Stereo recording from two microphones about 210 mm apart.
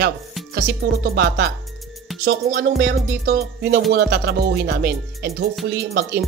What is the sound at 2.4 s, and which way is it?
Speech, 45° right (ahead or behind).